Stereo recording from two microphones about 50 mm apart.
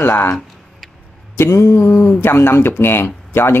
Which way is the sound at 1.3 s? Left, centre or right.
Left.